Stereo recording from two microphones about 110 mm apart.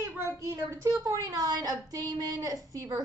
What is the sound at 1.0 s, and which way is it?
Speech, 30° right (ahead or behind).